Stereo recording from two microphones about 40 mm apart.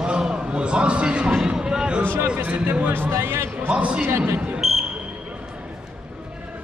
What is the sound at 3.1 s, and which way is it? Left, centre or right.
Speech, right.